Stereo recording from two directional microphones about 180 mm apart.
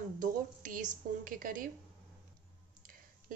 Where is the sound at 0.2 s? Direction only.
45° right (ahead or behind).